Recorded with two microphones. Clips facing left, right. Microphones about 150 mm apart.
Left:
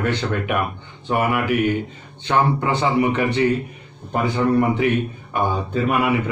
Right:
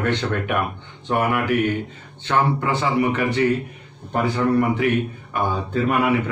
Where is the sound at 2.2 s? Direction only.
20° left (ahead or behind).